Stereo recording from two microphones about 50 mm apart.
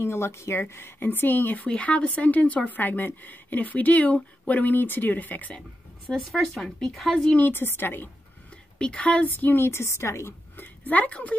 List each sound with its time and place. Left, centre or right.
0.0 s a woman's voice: left
1.7 s speech: left
6.1 s speech: centre
6.9 s speech: centre
7.3 s a woman's voice: left
8.7 s speech: left
9.7 s a woman's voice: left
10.6 s a woman's voice: left